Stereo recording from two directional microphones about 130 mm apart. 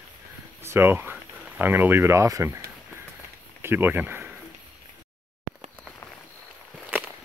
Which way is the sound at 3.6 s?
15° right (ahead or behind).